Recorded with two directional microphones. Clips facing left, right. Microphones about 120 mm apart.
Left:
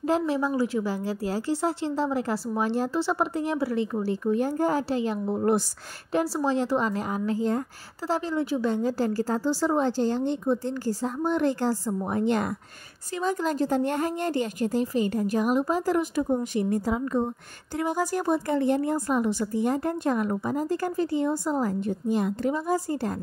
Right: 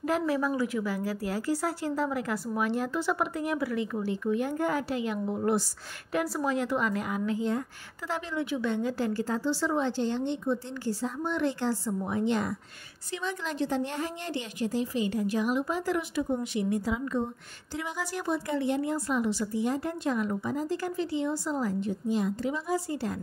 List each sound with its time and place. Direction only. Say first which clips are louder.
0.0 s a woman's voice: left 3 dB; 25° left (ahead or behind)
6.1 s a woman's voice: left 4 dB; 30° left (ahead or behind); by 23.1 s 45° left (ahead or behind)